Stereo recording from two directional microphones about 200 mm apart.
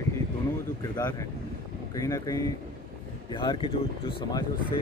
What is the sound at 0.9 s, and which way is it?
Speech, 20° left (ahead or behind).